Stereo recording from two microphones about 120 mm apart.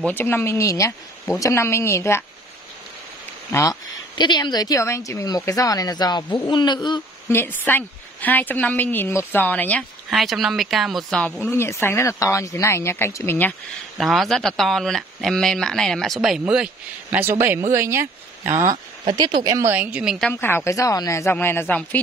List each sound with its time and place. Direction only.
0.0 s speech: 15° left (ahead or behind)
3.5 s a woman's voice: 35° left (ahead or behind)
7.2 s a woman's voice: 20° left (ahead or behind)
10.0 s speech: centre (ahead or behind)
11.5 s speech: 20° left (ahead or behind)
13.9 s speech: centre (ahead or behind)
17.2 s speech: 20° right (ahead or behind)
19.0 s speech: 40° right (ahead or behind)
19.7 s a woman's voice: 10° right (ahead or behind)
20.3 s speech: 20° left (ahead or behind)